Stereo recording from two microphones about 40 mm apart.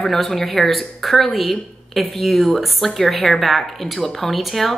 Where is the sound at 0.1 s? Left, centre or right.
Centre.